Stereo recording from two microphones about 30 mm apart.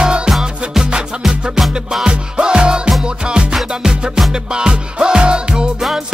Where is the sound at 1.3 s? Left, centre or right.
Centre.